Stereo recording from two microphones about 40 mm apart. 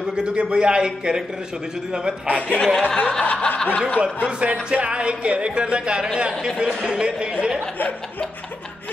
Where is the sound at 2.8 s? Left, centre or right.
Left.